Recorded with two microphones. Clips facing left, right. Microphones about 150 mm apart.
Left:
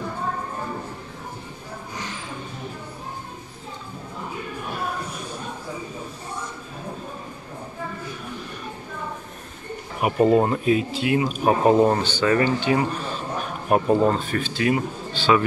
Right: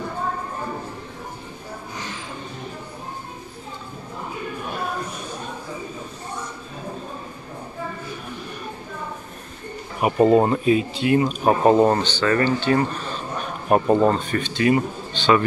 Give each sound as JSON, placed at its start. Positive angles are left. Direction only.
{"t": 10.2, "sound": "speech", "side_deg": 0}
{"t": 13.7, "sound": "speech", "side_deg": 0}